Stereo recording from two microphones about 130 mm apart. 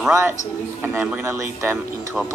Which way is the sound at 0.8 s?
10° right (ahead or behind).